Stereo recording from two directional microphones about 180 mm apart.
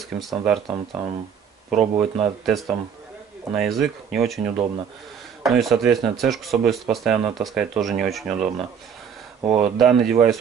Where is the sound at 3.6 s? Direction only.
Centre (ahead or behind).